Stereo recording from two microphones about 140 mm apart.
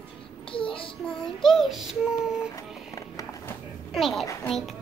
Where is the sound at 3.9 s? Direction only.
Centre (ahead or behind).